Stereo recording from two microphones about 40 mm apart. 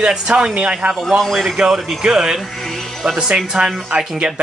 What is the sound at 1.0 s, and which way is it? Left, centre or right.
A man's voice, centre.